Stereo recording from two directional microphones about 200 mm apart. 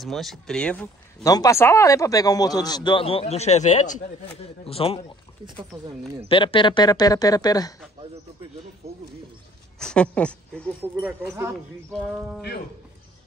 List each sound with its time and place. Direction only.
0.0 s speech: centre (ahead or behind)
1.2 s speech: 15° left (ahead or behind)
5.7 s speech: 20° right (ahead or behind)
6.2 s speech: 25° left (ahead or behind)
9.8 s speech: 5° left (ahead or behind)
12.0 s speech: centre (ahead or behind)